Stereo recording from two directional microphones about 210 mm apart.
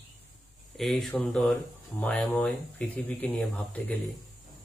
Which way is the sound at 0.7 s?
Centre (ahead or behind).